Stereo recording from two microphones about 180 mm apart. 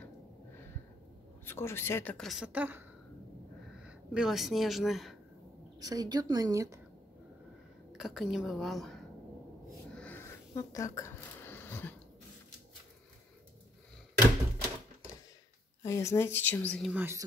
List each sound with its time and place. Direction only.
1.4 s a woman's voice: 15° left (ahead or behind); by 2.8 s 10° right (ahead or behind)
3.8 s speech: 5° right (ahead or behind)
5.8 s a woman's voice: 20° right (ahead or behind)
7.9 s a woman's voice: centre (ahead or behind)
9.9 s a sound: 10° left (ahead or behind)
10.5 s a sound: 20° left (ahead or behind)
15.8 s a woman's voice: 15° left (ahead or behind)
16.9 s speech: 10° right (ahead or behind)